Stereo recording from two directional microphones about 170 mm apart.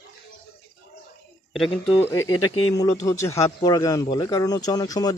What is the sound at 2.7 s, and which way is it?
Speech, 20° left (ahead or behind).